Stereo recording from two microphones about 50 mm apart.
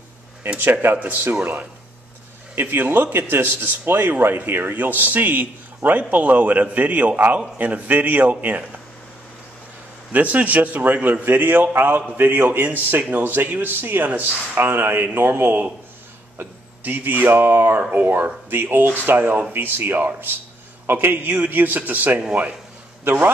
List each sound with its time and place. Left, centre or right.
0.6 s speech: right
10.1 s speech: right